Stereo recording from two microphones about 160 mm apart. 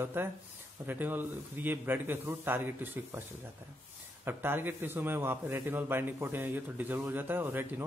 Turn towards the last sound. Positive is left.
turn(degrees=-15)  # may be behind; listen again after turning